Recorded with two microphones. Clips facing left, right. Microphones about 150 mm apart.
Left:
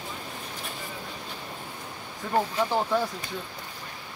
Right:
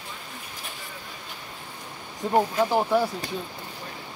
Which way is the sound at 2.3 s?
20° right (ahead or behind).